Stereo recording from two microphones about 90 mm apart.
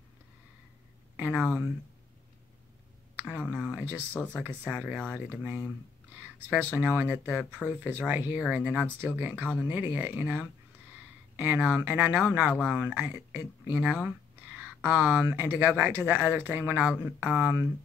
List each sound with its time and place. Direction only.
1.1 s speech: 20° right (ahead or behind)
4.1 s speech: 20° left (ahead or behind)
4.4 s speech: 20° right (ahead or behind)